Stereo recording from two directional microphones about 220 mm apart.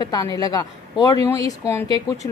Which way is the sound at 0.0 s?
15° left (ahead or behind).